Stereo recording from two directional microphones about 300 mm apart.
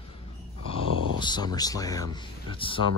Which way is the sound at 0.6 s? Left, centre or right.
Right.